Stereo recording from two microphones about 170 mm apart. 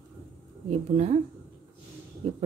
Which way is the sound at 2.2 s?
35° right (ahead or behind).